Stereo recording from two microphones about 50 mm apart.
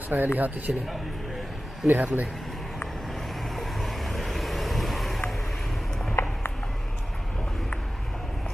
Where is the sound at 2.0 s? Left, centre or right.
Right.